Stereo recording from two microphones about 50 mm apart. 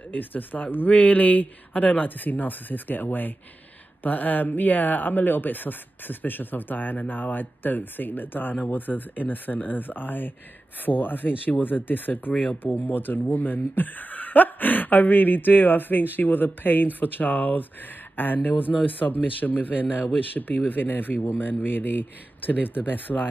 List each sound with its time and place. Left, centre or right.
0.1 s speech: left